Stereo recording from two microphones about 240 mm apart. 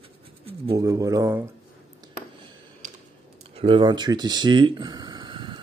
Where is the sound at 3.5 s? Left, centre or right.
Right.